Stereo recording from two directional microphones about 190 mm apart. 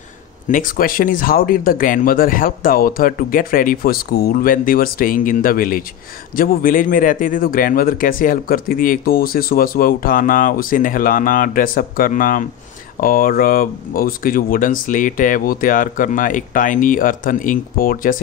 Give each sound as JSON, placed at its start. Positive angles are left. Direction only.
{"t": 0.5, "sound": "a man's voice", "side_deg": 45}